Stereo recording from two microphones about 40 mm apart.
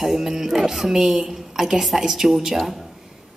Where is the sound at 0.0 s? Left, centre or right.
Centre.